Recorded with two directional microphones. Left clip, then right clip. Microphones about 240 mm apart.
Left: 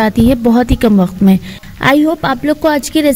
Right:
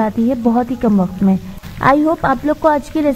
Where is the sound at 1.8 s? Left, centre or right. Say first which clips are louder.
Left 2 dB; left.